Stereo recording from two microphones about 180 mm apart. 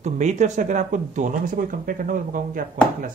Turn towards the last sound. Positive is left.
turn(degrees=-50)  # may be behind; listen again after turning